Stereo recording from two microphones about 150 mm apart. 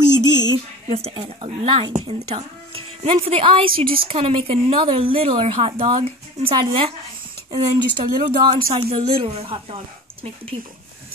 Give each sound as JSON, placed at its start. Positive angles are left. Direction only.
{"t": 0.5, "sound": "a woman's voice", "side_deg": -40}